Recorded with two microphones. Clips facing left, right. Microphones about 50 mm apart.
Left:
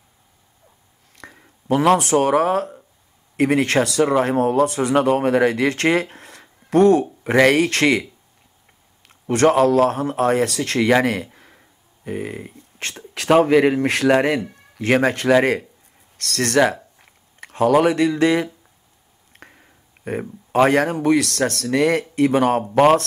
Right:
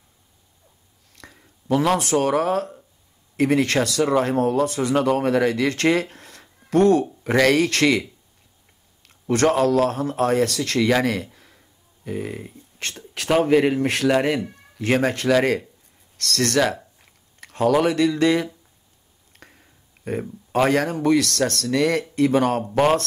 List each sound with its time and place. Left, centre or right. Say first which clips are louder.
1.1 s speech: left 4 dB; left
11.3 s a sound: left 3 dB; left
13.4 s speech: left 1 dB; left
16.3 s speech: left 3 dB; left
17.0 s a sound: left 4 dB; left
19.3 s clicking: left 4 dB; left
20.2 s a man's voice: left 4 dB; left
22.8 s speech: left 5 dB; left